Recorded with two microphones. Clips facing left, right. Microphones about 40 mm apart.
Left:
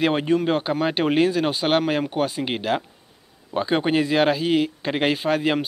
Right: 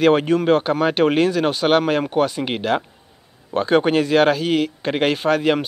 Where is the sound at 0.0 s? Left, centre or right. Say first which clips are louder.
Right 5 dB; centre.